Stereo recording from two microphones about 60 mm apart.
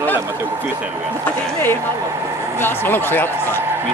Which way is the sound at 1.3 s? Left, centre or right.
Left.